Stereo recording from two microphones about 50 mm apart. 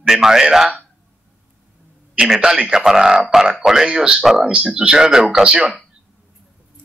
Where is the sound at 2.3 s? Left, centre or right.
Centre.